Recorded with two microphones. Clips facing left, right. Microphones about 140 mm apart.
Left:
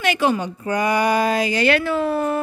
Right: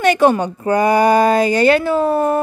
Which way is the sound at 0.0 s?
50° right (ahead or behind).